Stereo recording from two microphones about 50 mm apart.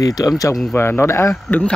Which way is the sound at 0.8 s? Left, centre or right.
Left.